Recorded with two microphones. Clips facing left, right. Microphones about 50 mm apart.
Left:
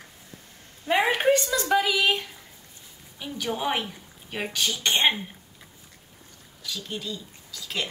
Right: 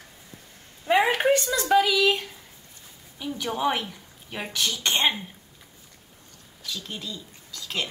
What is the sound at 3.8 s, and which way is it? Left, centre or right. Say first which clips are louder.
Speech: left 1 dB; centre.